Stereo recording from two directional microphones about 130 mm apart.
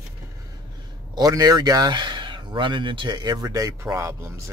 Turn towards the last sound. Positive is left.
turn(degrees=-20)  # may be behind; listen again after turning